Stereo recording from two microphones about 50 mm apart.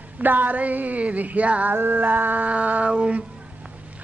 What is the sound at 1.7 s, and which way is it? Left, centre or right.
Humming, right.